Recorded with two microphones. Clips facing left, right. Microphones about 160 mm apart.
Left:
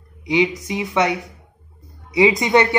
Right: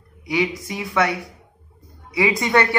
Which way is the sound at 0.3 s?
20° left (ahead or behind).